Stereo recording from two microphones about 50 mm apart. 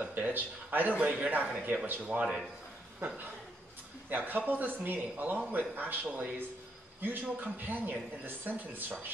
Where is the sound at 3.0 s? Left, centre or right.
Right.